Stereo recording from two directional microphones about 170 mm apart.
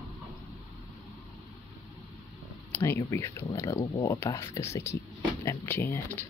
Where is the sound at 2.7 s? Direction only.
15° left (ahead or behind).